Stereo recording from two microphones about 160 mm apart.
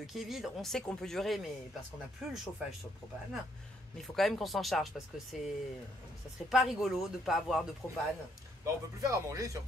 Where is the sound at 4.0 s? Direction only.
Centre (ahead or behind).